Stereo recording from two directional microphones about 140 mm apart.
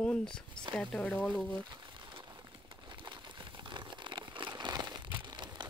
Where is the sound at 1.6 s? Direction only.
35° right (ahead or behind).